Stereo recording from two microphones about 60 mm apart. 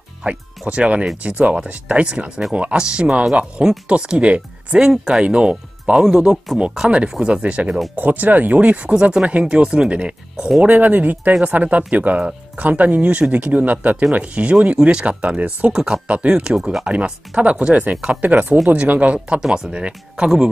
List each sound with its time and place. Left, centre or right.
0.2 s speech: centre
6.9 s speech: centre
10.7 s speech: right